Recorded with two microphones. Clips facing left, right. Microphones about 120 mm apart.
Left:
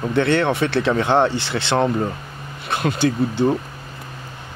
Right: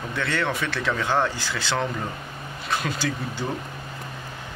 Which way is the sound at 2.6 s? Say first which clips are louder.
Left 5 dB; 60° left (ahead or behind).